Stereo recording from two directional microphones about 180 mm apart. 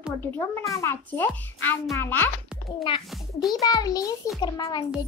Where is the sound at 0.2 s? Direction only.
15° left (ahead or behind).